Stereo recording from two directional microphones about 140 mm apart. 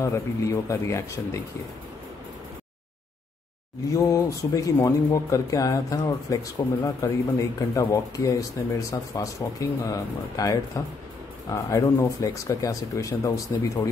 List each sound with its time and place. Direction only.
0.0 s speech: 20° left (ahead or behind)
3.9 s speech: 25° left (ahead or behind)